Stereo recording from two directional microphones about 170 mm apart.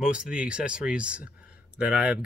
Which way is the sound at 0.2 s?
5° right (ahead or behind).